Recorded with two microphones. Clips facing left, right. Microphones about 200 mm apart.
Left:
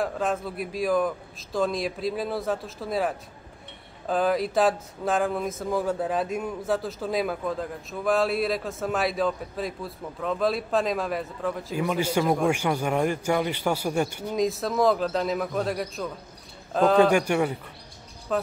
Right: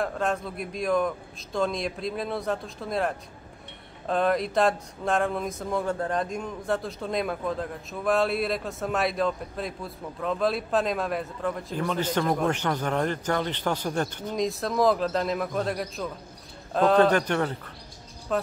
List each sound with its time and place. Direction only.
0.0 s speech: centre (ahead or behind)